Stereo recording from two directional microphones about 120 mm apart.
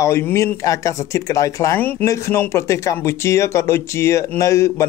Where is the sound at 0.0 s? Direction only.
25° left (ahead or behind).